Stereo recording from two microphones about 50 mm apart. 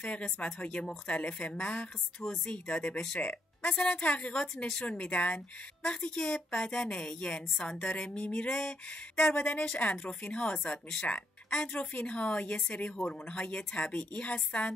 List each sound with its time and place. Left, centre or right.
0.0 s speech: left
5.8 s a woman's voice: centre
9.2 s speech: left